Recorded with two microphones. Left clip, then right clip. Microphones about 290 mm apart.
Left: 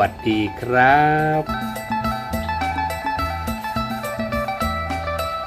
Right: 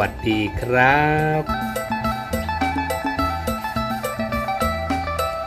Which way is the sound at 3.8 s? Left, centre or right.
Centre.